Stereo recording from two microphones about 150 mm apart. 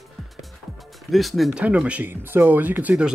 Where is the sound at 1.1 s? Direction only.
Centre (ahead or behind).